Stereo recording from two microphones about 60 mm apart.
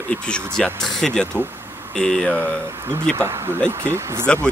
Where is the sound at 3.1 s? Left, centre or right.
Right.